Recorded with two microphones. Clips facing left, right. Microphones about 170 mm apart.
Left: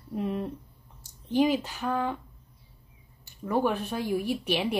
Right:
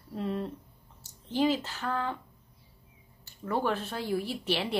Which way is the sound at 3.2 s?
15° left (ahead or behind).